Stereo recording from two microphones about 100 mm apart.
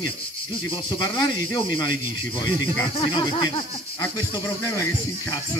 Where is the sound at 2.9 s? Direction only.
55° left (ahead or behind).